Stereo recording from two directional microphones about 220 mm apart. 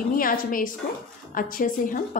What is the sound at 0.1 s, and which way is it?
A woman's voice, 40° left (ahead or behind).